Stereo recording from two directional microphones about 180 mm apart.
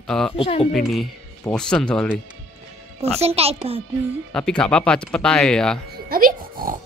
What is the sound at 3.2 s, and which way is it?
Speech, 35° right (ahead or behind).